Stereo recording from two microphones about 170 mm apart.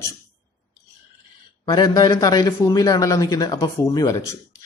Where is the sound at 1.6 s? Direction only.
25° left (ahead or behind).